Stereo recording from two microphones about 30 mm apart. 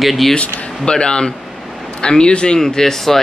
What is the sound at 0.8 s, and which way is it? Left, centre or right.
A man's voice, left.